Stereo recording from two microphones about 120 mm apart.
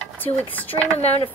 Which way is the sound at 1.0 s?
60° left (ahead or behind).